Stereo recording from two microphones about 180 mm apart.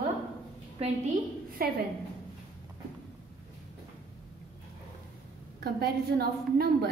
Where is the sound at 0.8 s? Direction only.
35° right (ahead or behind).